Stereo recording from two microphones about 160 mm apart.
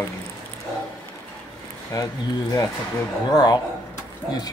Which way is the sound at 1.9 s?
20° left (ahead or behind).